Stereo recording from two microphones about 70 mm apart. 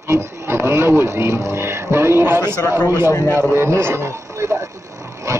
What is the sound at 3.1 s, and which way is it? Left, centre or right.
Speech, left.